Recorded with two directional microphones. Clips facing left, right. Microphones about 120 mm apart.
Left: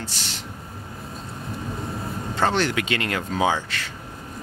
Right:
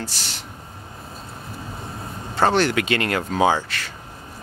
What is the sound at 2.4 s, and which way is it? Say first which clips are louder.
Speech: right 4 dB; 50° right (ahead or behind).